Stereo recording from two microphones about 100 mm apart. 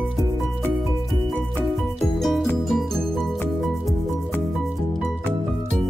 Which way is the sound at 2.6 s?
Centre (ahead or behind).